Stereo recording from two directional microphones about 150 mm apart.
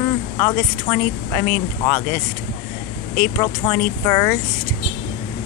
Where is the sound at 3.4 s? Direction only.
20° left (ahead or behind).